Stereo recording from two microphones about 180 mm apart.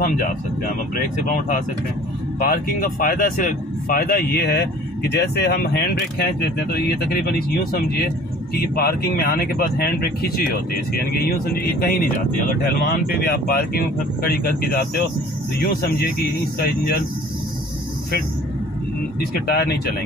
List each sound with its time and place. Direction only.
0.9 s speech: 50° left (ahead or behind)
16.5 s speech: 55° left (ahead or behind)
19.4 s speech: 60° left (ahead or behind)